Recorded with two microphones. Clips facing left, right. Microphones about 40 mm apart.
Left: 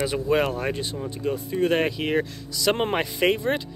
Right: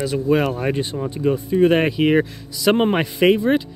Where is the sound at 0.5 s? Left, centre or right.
Centre.